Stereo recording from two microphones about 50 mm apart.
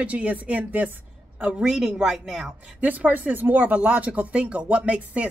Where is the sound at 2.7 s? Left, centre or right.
Right.